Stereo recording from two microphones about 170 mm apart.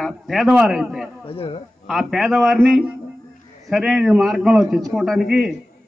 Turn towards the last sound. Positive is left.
turn(degrees=0)  # may be behind; listen again after turning